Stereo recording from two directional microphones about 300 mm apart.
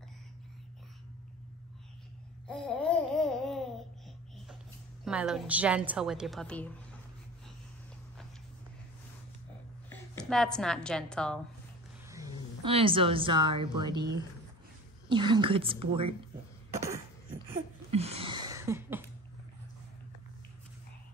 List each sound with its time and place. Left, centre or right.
2.4 s babbling: centre
5.0 s a woman's voice: centre
9.8 s a woman's voice: centre
12.1 s a woman's voice: centre
17.9 s a sound: centre